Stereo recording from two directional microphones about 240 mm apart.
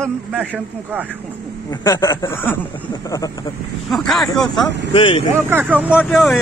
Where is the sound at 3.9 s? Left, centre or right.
Centre.